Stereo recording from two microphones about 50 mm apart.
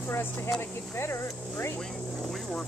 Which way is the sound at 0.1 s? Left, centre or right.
Left.